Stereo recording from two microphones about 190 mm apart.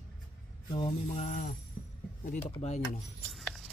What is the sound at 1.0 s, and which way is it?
Speech, 40° left (ahead or behind).